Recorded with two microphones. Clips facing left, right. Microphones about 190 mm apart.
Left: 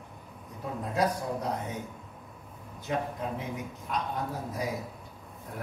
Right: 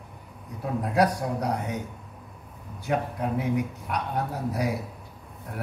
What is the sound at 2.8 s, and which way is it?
A man's voice, 70° right (ahead or behind).